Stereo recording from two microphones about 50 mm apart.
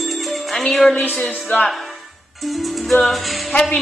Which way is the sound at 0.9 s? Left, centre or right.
Left.